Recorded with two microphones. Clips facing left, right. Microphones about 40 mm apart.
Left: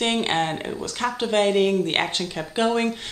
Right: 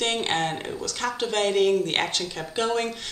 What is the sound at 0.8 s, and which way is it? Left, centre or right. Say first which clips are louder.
A woman's voice: left 2 dB; left.